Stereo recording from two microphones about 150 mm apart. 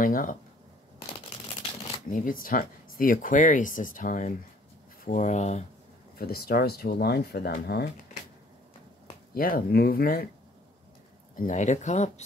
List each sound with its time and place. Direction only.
0.0 s speech: 65° left (ahead or behind)
2.0 s speech: 65° left (ahead or behind)
6.1 s speech: 90° left
9.3 s speech: 70° left (ahead or behind)
11.3 s speech: 55° left (ahead or behind)